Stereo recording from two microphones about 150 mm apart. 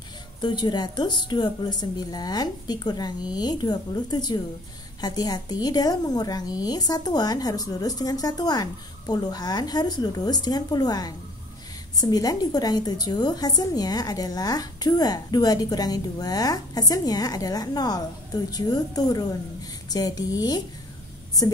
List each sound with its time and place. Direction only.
0.4 s a woman's voice: 30° left (ahead or behind)